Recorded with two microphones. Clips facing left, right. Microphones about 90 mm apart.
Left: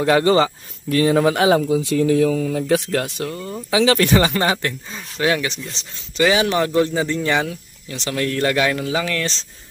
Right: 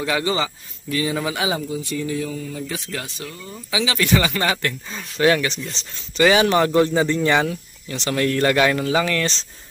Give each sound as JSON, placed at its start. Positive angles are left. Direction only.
{"t": 0.0, "sound": "speech", "side_deg": 50}
{"t": 1.6, "sound": "speech", "side_deg": 90}
{"t": 4.9, "sound": "speech", "side_deg": 5}